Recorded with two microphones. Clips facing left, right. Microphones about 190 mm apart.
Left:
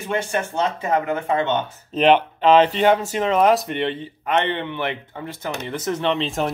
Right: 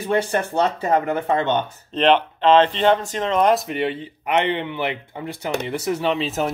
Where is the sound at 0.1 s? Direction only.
35° right (ahead or behind).